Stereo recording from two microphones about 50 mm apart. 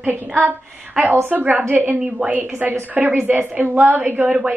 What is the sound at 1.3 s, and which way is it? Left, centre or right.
Speech, right.